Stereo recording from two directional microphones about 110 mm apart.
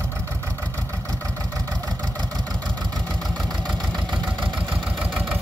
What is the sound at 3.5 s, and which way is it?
Vehicle, 40° right (ahead or behind).